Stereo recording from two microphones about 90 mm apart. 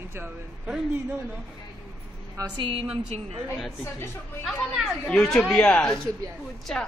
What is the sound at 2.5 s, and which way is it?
Speech, 70° right (ahead or behind).